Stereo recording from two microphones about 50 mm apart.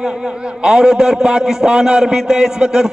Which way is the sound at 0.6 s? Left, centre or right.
Centre.